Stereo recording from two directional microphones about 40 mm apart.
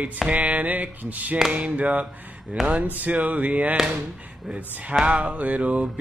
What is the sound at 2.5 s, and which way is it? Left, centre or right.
Music, right.